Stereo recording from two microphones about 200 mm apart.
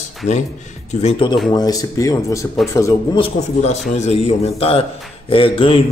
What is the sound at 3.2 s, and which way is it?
A man's voice, 35° left (ahead or behind).